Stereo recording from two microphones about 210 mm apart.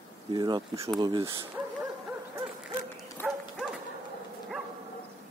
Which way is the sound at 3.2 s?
10° left (ahead or behind).